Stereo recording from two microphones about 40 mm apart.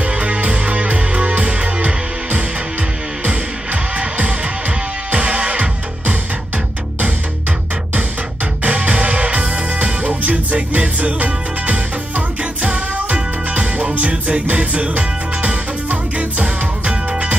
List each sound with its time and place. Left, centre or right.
0.0 s music: right
8.6 s music: right